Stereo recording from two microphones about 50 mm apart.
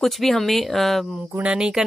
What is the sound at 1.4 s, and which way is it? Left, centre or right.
Speech, centre.